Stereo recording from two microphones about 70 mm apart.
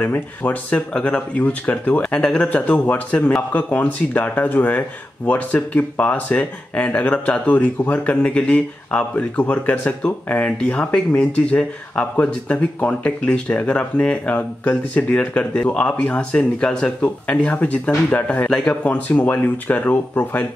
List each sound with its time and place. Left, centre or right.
0.0 s speech: left